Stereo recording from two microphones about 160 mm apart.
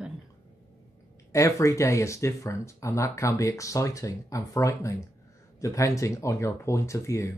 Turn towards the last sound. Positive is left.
turn(degrees=20)  # may be behind; listen again after turning